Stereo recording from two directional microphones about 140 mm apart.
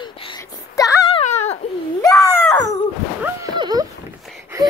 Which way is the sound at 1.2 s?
50° left (ahead or behind).